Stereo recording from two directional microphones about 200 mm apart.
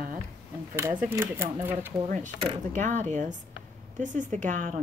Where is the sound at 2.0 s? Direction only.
40° right (ahead or behind).